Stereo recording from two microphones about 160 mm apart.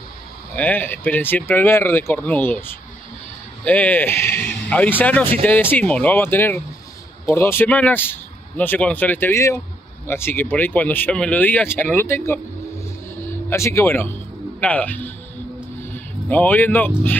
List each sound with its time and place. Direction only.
0.6 s speech: 10° left (ahead or behind)
13.5 s a man's voice: 15° left (ahead or behind)